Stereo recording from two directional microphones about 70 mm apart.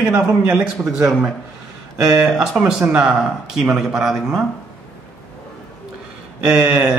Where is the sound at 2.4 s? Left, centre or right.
Centre.